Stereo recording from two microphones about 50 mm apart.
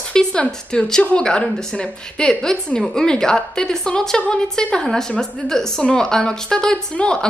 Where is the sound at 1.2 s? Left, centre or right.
Centre.